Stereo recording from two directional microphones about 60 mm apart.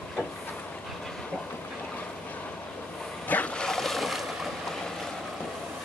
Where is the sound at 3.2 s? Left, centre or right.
Left.